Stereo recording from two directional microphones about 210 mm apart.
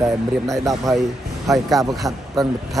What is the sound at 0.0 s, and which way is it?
Speech, 15° right (ahead or behind).